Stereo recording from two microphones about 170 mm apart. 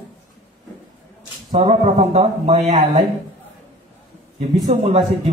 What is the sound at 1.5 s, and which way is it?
A man's voice, 35° right (ahead or behind).